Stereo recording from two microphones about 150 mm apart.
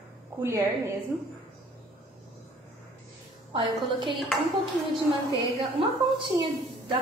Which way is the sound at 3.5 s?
35° right (ahead or behind).